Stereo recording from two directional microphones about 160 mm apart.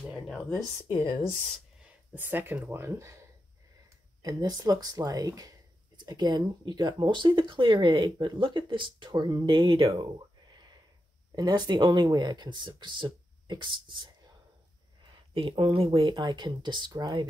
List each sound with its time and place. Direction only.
0.0 s speech: 5° right (ahead or behind)
0.9 s speech: 10° left (ahead or behind)
1.8 s speech: 10° right (ahead or behind); by 9.9 s 35° right (ahead or behind)
9.9 s a sound: 30° right (ahead or behind)
11.3 s speech: 25° right (ahead or behind)
15.3 s speech: 35° right (ahead or behind)